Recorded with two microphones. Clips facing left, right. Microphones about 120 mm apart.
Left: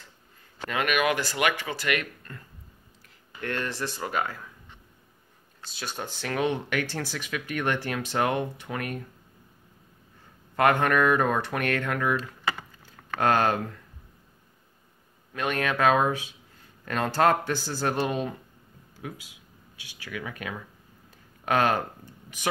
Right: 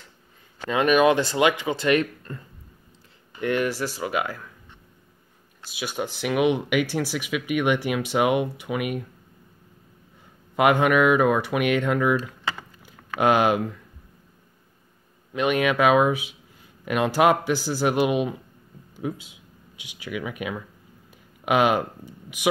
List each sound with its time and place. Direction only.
0.7 s speech: 25° right (ahead or behind)
3.3 s speech: 15° right (ahead or behind)
5.7 s speech: 10° right (ahead or behind)
10.5 s speech: 15° right (ahead or behind)
15.3 s speech: 15° right (ahead or behind)
18.9 s speech: 25° right (ahead or behind)